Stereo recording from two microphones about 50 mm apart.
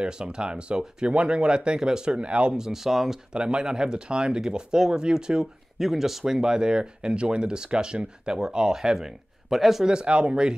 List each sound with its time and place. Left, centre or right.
0.0 s speech: centre
2.5 s speech: centre
3.3 s speech: centre
9.8 s speech: centre